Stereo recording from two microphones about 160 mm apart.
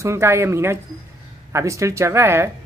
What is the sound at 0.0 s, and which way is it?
A woman's voice, 15° right (ahead or behind).